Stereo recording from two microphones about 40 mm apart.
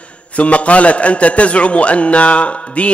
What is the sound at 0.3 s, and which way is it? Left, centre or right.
A man's voice, left.